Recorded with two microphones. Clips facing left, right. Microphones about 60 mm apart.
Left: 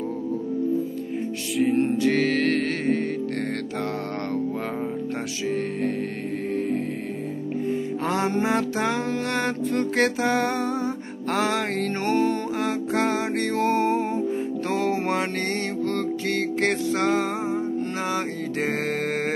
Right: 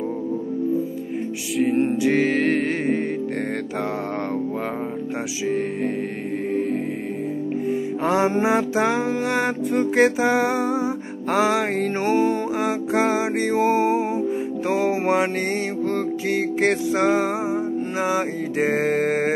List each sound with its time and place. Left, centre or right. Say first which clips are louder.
1.8 s music: right 2 dB; centre
8.0 s music: right 5 dB; centre